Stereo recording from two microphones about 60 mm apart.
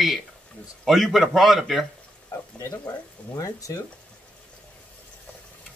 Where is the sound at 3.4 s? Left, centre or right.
Left.